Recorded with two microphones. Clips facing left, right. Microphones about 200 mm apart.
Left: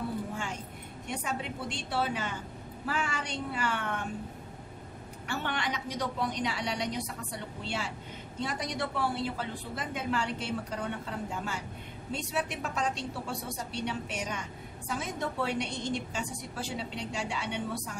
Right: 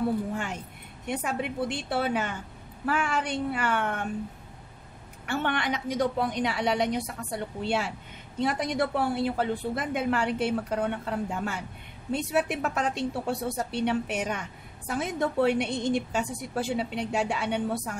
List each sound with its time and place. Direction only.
1.0 s a woman's voice: 60° right (ahead or behind)
5.2 s a woman's voice: 55° right (ahead or behind)